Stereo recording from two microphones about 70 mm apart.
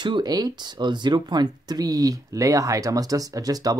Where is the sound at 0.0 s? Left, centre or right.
Right.